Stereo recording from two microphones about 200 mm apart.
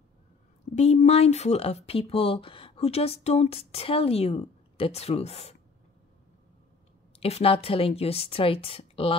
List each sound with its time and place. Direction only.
0.7 s speech: 30° left (ahead or behind)
7.2 s a woman's voice: 30° left (ahead or behind)